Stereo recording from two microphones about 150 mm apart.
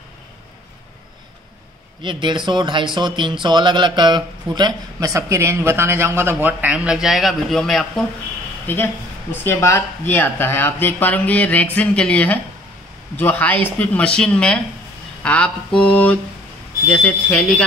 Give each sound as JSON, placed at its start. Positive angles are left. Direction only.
{"t": 2.0, "sound": "speech", "side_deg": -30}
{"t": 8.6, "sound": "speech", "side_deg": 15}